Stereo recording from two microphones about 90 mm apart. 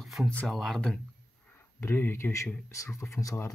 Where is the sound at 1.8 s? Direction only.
25° left (ahead or behind).